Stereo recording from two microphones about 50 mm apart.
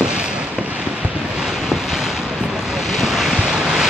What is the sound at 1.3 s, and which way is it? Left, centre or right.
Vehicle, centre.